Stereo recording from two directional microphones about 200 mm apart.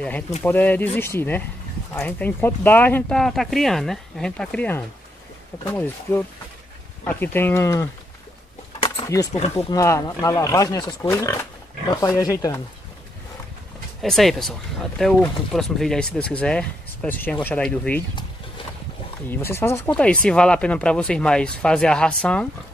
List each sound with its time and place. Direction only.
0.4 s speech: 10° left (ahead or behind)
8.7 s a sound: 20° left (ahead or behind)
9.3 s speech: 35° left (ahead or behind)
9.7 s speech: 15° left (ahead or behind)
14.0 s speech: centre (ahead or behind)
19.2 s speech: 10° left (ahead or behind)